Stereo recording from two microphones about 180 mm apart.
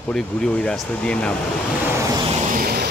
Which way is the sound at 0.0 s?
5° left (ahead or behind).